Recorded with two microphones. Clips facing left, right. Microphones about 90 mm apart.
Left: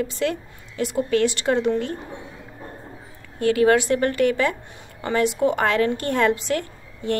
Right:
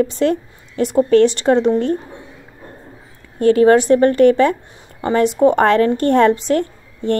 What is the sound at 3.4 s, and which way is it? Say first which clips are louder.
A woman's voice: right 6 dB; 35° right (ahead or behind).